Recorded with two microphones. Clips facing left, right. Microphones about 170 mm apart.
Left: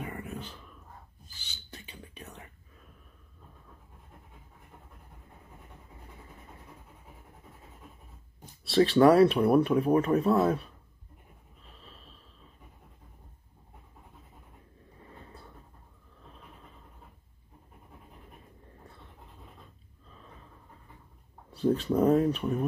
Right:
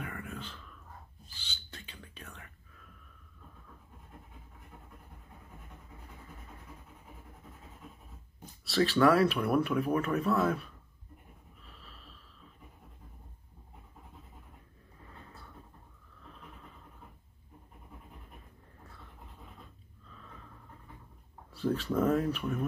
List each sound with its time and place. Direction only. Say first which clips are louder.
0.0 s a sound: left 3 dB; 20° left (ahead or behind)
1.7 s whispering: left 5 dB; 15° left (ahead or behind)
8.6 s speech: left 5 dB; 25° left (ahead or behind)
21.5 s speech: left 5 dB; 25° left (ahead or behind)